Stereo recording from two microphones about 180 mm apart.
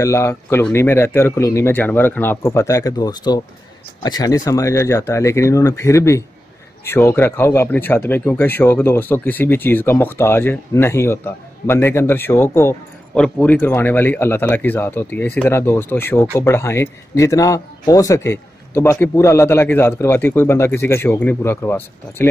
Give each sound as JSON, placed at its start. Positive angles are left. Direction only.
{"t": 0.0, "sound": "speech", "side_deg": 15}